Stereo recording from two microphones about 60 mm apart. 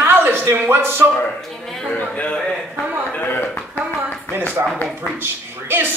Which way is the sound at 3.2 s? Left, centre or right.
Left.